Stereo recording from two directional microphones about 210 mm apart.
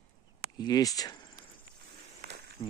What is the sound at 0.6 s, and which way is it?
Speech, 15° left (ahead or behind).